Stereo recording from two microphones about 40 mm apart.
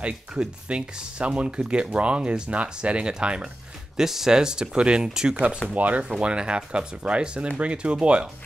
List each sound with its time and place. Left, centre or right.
0.0 s speech: right
3.9 s speech: centre
5.8 s speech: right
6.2 s speech: right